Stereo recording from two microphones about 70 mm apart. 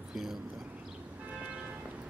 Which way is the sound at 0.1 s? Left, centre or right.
Centre.